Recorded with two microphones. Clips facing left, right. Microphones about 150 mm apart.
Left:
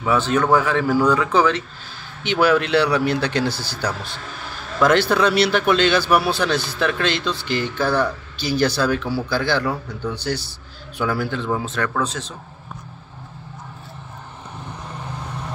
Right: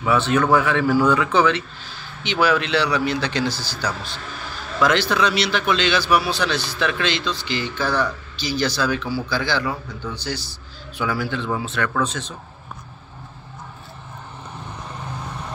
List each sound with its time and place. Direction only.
0.1 s speech: 40° left (ahead or behind)
2.4 s a man's voice: 50° left (ahead or behind)
4.8 s a man's voice: 50° left (ahead or behind)
11.0 s a man's voice: 50° left (ahead or behind); by 12.4 s 35° left (ahead or behind)